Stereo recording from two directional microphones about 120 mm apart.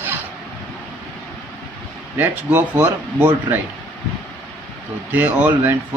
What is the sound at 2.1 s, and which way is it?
Speech, 15° right (ahead or behind).